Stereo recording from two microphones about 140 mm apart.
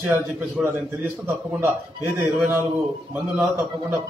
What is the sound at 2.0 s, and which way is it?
A man's voice, 15° right (ahead or behind).